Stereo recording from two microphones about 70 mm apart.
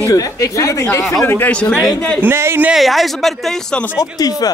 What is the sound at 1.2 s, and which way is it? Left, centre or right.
Speech, left.